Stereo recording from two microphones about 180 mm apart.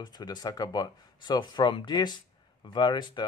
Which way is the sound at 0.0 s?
25° left (ahead or behind).